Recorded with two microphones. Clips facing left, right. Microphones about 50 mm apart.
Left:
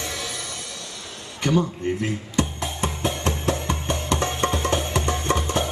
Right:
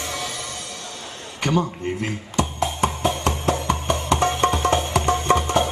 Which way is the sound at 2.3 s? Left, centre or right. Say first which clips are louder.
Right 5 dB; right.